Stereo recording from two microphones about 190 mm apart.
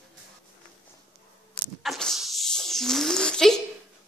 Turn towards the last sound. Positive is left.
turn(degrees=5)  # may be behind; listen again after turning